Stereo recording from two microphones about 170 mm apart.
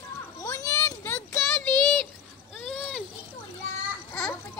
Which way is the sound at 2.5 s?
Centre (ahead or behind).